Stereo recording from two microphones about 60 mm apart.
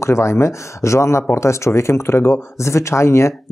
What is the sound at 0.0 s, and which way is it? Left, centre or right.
Speech, left.